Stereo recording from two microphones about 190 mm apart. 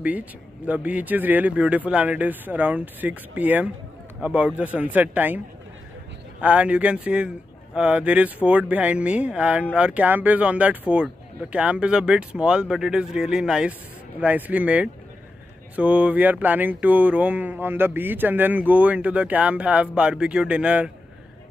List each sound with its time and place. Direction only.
0.0 s speech: 10° right (ahead or behind)
6.4 s speech: 5° right (ahead or behind)